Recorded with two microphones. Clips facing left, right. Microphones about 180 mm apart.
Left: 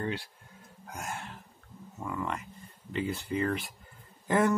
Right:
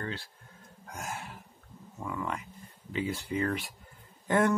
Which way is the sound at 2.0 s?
Centre (ahead or behind).